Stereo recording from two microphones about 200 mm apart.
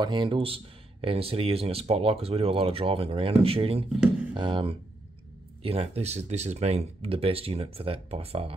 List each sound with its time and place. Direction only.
0.0 s speech: 25° right (ahead or behind)